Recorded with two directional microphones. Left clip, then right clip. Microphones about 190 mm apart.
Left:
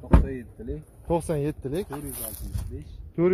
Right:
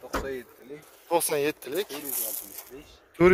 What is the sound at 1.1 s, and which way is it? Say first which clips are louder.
Speech: right 1 dB; centre (ahead or behind).